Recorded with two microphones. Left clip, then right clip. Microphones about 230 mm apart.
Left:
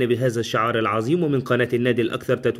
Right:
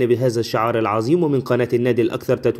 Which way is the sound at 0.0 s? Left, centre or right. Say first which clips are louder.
Right 3 dB; centre.